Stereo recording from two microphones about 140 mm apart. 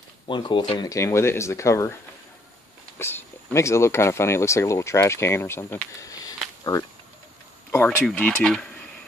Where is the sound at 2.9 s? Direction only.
15° left (ahead or behind).